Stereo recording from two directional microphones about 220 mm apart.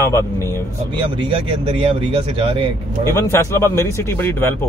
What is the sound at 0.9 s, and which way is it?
Speech, 20° right (ahead or behind).